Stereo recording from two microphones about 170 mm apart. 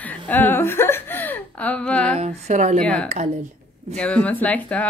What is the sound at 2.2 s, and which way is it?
Speech, 40° right (ahead or behind).